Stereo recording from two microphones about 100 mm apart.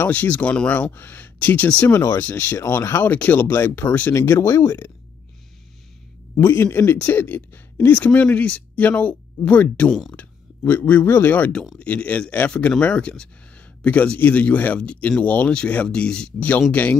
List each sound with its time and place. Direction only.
0.0 s speech: 15° left (ahead or behind)
6.4 s speech: 25° left (ahead or behind)